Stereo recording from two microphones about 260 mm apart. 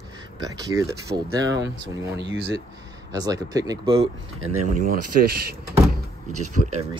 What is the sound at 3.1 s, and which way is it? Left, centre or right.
Speech, centre.